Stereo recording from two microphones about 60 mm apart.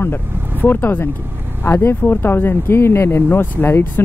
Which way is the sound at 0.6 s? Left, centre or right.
Left.